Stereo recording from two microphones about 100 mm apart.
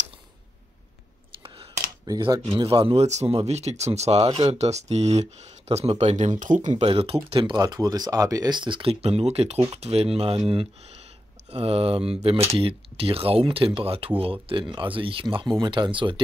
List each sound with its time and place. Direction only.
1.4 s a sound: 60° right (ahead or behind)
2.5 s speech: 65° right (ahead or behind); by 4.3 s 90° right
4.3 s speech: 75° right (ahead or behind)
7.5 s speech: 40° right (ahead or behind)
9.0 s speech: 90° right; by 16.2 s 55° right (ahead or behind)